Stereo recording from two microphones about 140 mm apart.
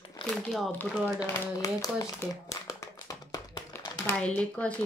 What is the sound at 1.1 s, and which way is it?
Speech, 25° left (ahead or behind).